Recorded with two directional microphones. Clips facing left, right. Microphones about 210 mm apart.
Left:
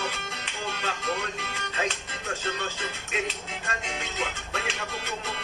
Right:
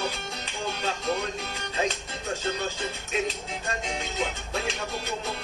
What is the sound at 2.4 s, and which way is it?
Speech, 35° right (ahead or behind).